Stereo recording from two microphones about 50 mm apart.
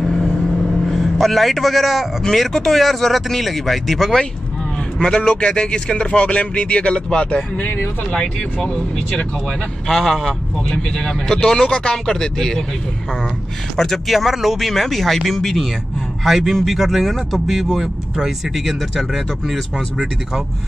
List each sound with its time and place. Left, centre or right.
0.8 s speech: centre
4.9 s speech: centre
7.5 s speech: left
8.1 s a man's voice: centre
9.8 s speech: centre
10.7 s a man's voice: centre
13.7 s speech: centre